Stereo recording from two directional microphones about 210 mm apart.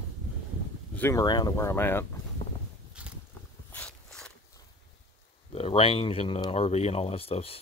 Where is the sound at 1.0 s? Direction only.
15° left (ahead or behind).